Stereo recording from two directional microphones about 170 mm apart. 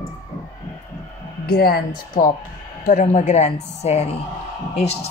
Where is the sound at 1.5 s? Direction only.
65° left (ahead or behind).